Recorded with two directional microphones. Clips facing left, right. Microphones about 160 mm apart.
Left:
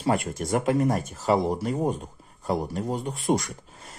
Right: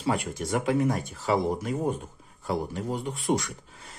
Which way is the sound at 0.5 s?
45° left (ahead or behind).